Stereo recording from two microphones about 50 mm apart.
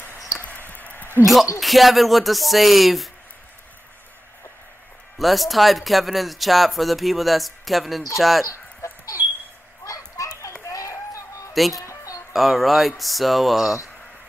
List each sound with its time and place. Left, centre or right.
0.5 s a sound: left
1.2 s speech: centre
5.2 s speech: centre
10.7 s a sound: left
11.8 s music: left
12.3 s speech: centre